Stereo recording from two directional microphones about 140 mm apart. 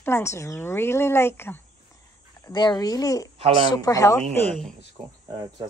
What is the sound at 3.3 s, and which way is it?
Speech, 45° right (ahead or behind).